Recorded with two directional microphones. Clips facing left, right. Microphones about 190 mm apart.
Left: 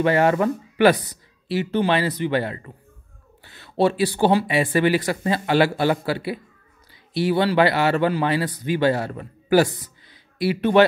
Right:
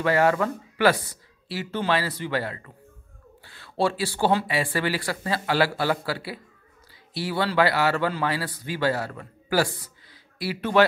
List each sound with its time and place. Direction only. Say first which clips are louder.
0.0 s speech: left 3 dB; 20° left (ahead or behind)